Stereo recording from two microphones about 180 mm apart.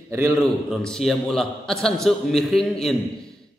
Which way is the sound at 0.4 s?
Centre (ahead or behind).